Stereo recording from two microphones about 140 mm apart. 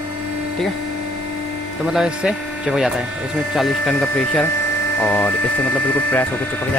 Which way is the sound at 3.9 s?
10° left (ahead or behind).